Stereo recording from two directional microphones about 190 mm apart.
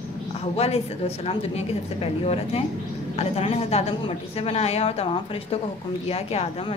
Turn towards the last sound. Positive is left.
turn(degrees=30)  # may be behind; listen again after turning